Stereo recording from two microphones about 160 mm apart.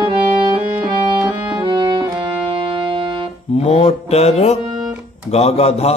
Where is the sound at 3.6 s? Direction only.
40° left (ahead or behind).